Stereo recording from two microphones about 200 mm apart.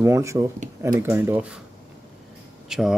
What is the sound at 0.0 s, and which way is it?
Speech, 15° right (ahead or behind).